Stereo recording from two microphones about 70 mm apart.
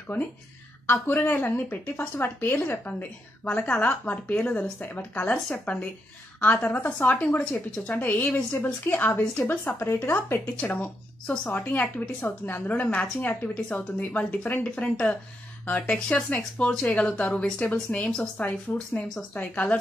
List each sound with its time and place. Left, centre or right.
0.8 s a woman's voice: left
9.7 s speech: left
10.4 s a woman's voice: centre
16.3 s speech: centre
18.4 s a woman's voice: left